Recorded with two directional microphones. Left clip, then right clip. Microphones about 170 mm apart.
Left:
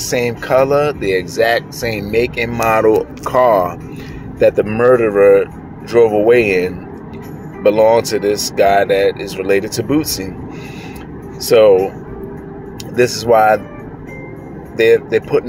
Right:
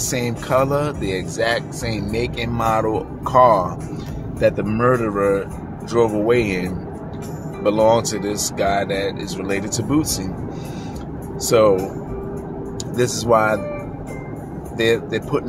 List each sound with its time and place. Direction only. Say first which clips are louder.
0.1 s speech: left 7 dB; 20° left (ahead or behind)
4.4 s speech: left 6 dB; 40° left (ahead or behind); by 10.2 s 20° left (ahead or behind)
11.4 s speech: left 6 dB; 25° left (ahead or behind)
12.9 s speech: left 5 dB; 25° left (ahead or behind)
14.8 s speech: left 8 dB; 25° left (ahead or behind)